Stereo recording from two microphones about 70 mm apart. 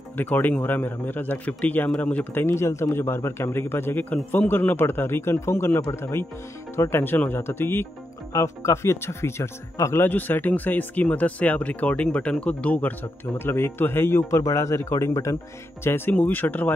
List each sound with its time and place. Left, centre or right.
0.4 s speech: left
2.4 s speech: left
5.9 s speech: left
6.8 s speech: left
10.0 s speech: left
13.4 s speech: left
14.3 s speech: left
15.8 s speech: left